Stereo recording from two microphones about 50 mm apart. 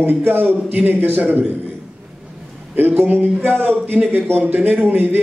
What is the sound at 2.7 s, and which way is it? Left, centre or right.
A man's voice, right.